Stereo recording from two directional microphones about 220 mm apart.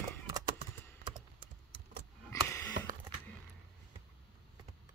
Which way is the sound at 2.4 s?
10° left (ahead or behind).